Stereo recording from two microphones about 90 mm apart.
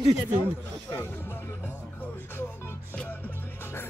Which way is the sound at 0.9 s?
25° left (ahead or behind).